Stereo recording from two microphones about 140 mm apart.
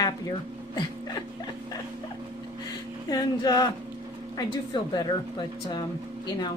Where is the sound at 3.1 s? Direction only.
30° left (ahead or behind).